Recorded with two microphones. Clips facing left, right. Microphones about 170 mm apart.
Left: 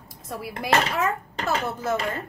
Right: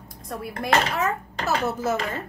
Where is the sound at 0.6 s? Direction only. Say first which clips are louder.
Even; centre (ahead or behind).